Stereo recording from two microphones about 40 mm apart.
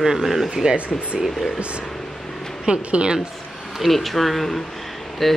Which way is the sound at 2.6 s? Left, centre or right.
Right.